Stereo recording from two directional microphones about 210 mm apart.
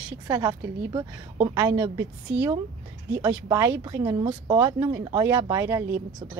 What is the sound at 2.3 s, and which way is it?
Speech, 55° right (ahead or behind).